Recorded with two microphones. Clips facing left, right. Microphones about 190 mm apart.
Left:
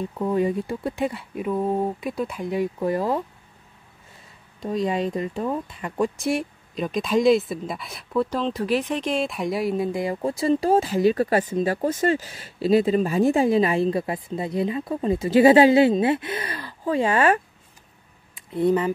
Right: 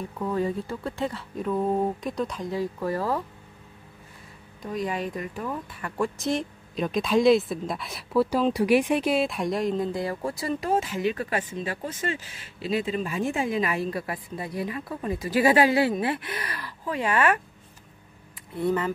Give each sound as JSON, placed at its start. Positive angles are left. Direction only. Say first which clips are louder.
{"t": 0.2, "sound": "speech", "louder": "left 4 dB", "side_deg": 15}
{"t": 4.6, "sound": "speech", "louder": "left 5 dB", "side_deg": 25}
{"t": 6.7, "sound": "speech", "louder": "left 1 dB", "side_deg": 0}
{"t": 18.3, "sound": "a sound", "louder": "left 5 dB", "side_deg": 20}